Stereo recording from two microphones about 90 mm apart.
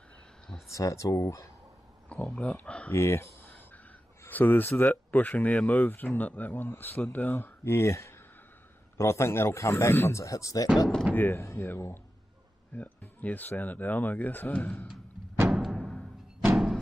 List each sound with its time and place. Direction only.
0.7 s speech: 35° left (ahead or behind)
2.0 s speech: 15° left (ahead or behind)
2.9 s a sound: 25° left (ahead or behind)
4.3 s speech: 20° left (ahead or behind); by 10.7 s 40° left (ahead or behind)
11.1 s speech: 20° left (ahead or behind)
15.4 s music: centre (ahead or behind)